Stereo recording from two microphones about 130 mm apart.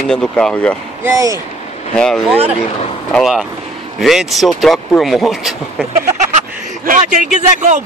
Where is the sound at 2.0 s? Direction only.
5° left (ahead or behind).